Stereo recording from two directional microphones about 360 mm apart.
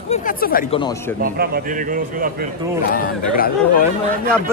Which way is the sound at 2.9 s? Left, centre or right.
Left.